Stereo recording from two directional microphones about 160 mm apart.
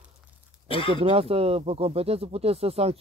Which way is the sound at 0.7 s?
30° left (ahead or behind).